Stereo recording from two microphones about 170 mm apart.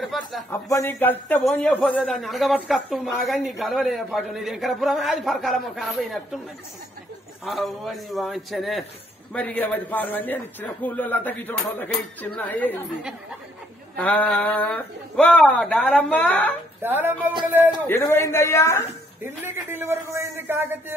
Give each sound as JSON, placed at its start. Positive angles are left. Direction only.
{"t": 0.0, "sound": "a man's voice", "side_deg": 0}
{"t": 0.5, "sound": "a man's voice", "side_deg": 15}
{"t": 7.4, "sound": "a man's voice", "side_deg": 0}
{"t": 13.9, "sound": "a man's voice", "side_deg": 10}
{"t": 16.8, "sound": "a man's voice", "side_deg": -10}
{"t": 17.8, "sound": "a man's voice", "side_deg": 15}
{"t": 19.2, "sound": "a man's voice", "side_deg": -15}